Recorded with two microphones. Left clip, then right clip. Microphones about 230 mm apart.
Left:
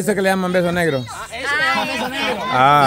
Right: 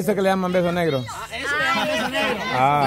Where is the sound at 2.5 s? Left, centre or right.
Left.